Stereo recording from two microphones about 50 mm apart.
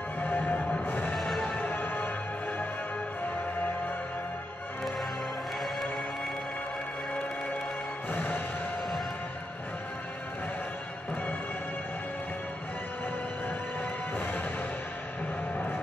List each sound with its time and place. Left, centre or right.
0.2 s music: left
1.1 s music: centre
1.5 s music: left
8.1 s music: left
14.1 s music: left